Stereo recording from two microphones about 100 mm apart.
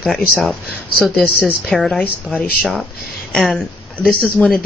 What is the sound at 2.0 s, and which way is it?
A woman's voice, 15° left (ahead or behind).